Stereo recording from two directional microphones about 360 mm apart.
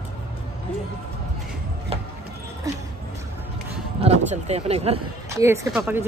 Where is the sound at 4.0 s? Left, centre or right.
Centre.